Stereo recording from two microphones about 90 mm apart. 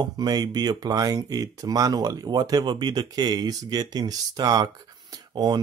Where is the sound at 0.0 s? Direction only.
50° right (ahead or behind).